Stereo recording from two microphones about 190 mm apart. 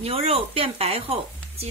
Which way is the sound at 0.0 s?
30° right (ahead or behind).